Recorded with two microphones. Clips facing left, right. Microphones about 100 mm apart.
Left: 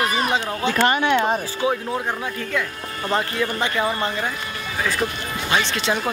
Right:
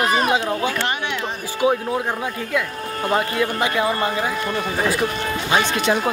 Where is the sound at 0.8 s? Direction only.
50° left (ahead or behind).